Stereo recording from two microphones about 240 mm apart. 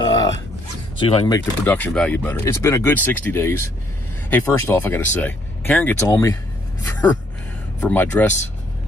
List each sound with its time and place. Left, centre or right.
0.0 s a sound: centre
0.9 s speech: left
1.7 s speech: centre